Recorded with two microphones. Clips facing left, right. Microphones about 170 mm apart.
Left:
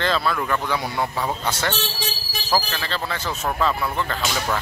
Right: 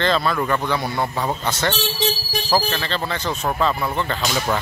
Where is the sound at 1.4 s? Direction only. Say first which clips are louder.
Right 3 dB; 10° left (ahead or behind).